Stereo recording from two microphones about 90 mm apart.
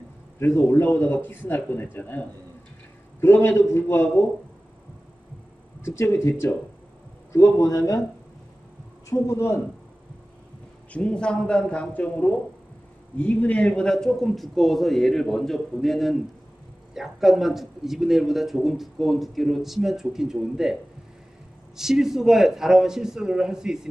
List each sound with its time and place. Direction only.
0.4 s a man's voice: 25° left (ahead or behind)
5.8 s a man's voice: 30° left (ahead or behind)
9.1 s a man's voice: 35° left (ahead or behind)
10.9 s a man's voice: 10° left (ahead or behind); by 20.7 s 5° right (ahead or behind)
21.7 s speech: 5° right (ahead or behind)